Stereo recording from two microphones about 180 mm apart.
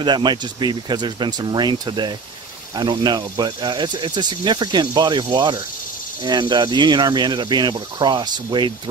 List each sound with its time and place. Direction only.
0.0 s speech: 25° right (ahead or behind)